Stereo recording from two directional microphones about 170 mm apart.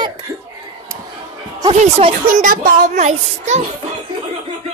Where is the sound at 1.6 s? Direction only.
30° right (ahead or behind).